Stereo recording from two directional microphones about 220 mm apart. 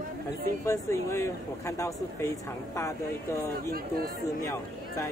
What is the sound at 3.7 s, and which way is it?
Speech, 45° right (ahead or behind).